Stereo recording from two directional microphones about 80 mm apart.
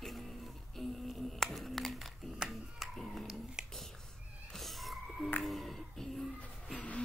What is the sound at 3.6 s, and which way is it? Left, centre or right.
Whispering, centre.